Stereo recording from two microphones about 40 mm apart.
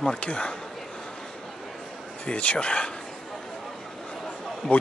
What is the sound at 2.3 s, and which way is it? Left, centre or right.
Speech, left.